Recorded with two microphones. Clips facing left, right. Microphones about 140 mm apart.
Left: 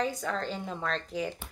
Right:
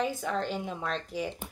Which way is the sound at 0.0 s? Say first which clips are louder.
Right 1 dB; 5° right (ahead or behind).